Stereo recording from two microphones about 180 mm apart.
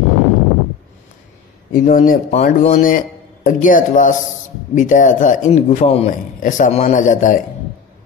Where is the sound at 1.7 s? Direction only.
50° left (ahead or behind).